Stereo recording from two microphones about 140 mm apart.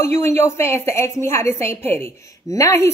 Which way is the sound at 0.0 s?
15° left (ahead or behind).